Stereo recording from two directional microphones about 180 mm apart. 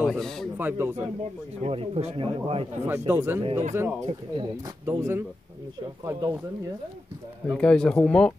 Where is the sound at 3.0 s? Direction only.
15° right (ahead or behind).